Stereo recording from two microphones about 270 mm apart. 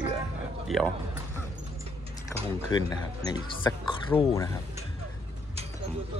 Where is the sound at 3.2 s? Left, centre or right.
Centre.